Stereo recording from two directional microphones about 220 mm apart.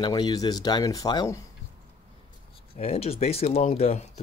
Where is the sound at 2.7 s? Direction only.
25° left (ahead or behind).